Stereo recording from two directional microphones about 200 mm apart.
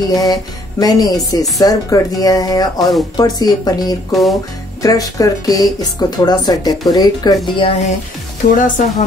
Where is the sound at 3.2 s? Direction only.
20° left (ahead or behind).